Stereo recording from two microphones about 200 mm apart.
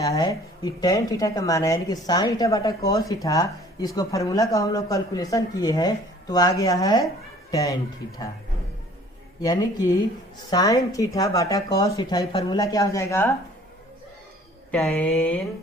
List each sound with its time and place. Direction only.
0.0 s speech: 15° left (ahead or behind)
9.4 s speech: 20° left (ahead or behind)
14.7 s speech: 5° left (ahead or behind)